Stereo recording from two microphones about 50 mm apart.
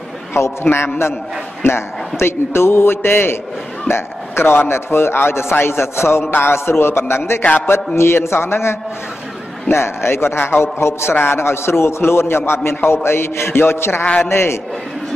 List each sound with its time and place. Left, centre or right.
0.3 s a man's voice: left